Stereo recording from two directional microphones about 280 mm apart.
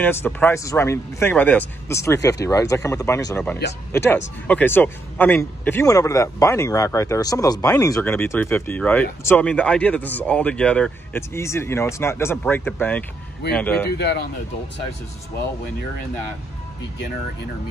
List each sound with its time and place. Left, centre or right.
0.0 s a man's voice: centre